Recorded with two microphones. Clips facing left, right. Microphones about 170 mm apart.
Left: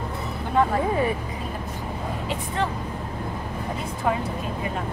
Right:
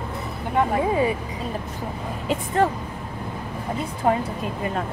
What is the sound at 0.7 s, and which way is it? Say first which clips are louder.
Speech: right 2 dB; 15° right (ahead or behind).